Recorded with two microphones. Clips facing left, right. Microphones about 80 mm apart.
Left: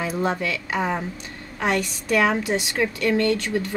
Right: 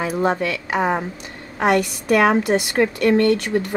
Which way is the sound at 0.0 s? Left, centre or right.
Centre.